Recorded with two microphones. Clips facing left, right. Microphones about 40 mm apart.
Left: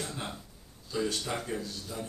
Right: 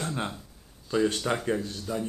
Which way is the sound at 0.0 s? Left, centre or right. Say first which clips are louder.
Right 6 dB; right.